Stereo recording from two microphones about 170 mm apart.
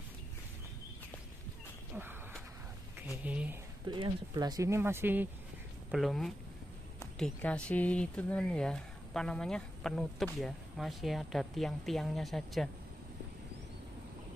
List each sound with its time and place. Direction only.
3.0 s speech: 10° right (ahead or behind)
3.8 s speech: 25° right (ahead or behind)
5.9 s speech: centre (ahead or behind)